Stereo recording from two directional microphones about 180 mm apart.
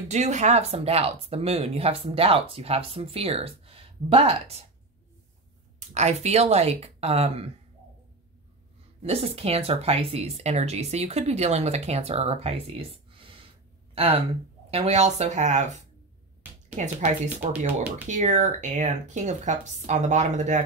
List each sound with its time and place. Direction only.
0.1 s speech: 40° right (ahead or behind)
5.8 s speech: 40° right (ahead or behind)
9.0 s speech: 35° right (ahead or behind)
16.7 s speech: 40° right (ahead or behind)